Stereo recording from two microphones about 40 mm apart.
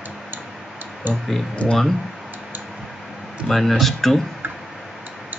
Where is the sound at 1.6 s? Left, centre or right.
Left.